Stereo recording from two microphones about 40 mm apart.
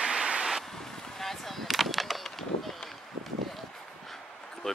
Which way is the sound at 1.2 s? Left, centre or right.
Centre.